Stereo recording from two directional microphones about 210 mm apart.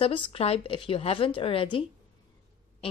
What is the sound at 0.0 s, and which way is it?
Speech, 25° left (ahead or behind).